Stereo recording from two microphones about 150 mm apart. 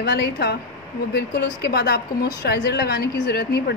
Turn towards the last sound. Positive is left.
turn(degrees=90)